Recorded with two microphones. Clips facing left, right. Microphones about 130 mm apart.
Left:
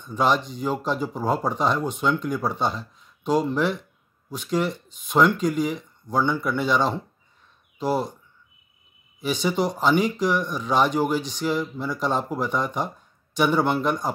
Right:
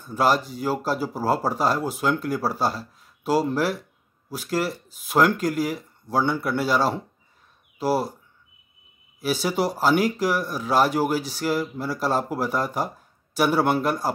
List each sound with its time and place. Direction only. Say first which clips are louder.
0.0 s speech: right 1 dB; 5° right (ahead or behind)
9.2 s speech: even; 5° right (ahead or behind)